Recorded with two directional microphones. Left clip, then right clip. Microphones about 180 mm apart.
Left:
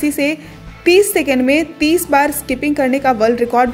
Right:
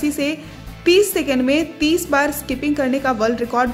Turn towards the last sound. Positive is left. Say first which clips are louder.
# left 5 dB
turn(degrees=15)  # may be behind; listen again after turning